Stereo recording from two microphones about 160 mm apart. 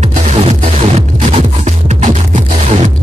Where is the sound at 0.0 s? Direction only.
45° right (ahead or behind).